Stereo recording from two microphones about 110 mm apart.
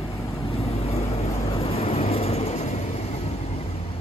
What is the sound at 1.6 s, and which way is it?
Vehicle, 70° left (ahead or behind).